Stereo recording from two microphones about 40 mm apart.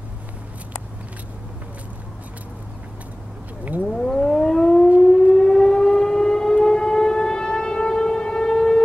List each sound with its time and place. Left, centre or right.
3.8 s civil defense siren: centre